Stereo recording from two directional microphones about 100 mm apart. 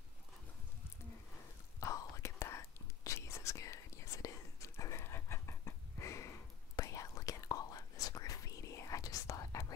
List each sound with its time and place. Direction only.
1.8 s whispering: 35° left (ahead or behind)